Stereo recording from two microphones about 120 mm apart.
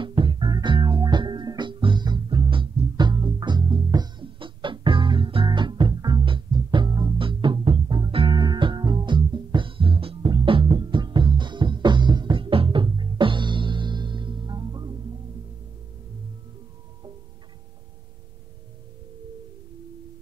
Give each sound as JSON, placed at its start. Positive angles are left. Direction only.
{"t": 0.0, "sound": "music", "side_deg": -45}